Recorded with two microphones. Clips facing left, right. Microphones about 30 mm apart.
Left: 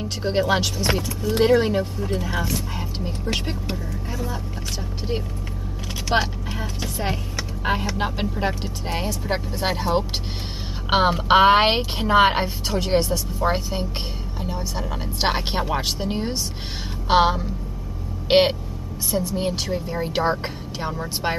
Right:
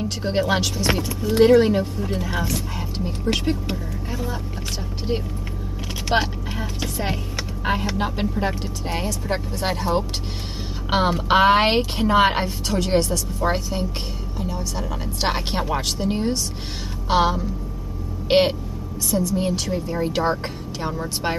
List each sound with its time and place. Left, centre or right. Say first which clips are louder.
0.0 s speech: even; centre
4.1 s vehicle: right 1 dB; centre
6.1 s speech: even; centre
17.1 s a woman's voice: left 2 dB; centre